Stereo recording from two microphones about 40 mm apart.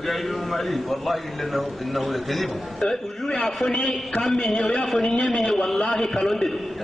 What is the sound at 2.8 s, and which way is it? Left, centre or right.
A man's voice, centre.